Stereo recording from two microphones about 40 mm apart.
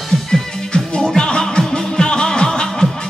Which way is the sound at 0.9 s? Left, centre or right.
Centre.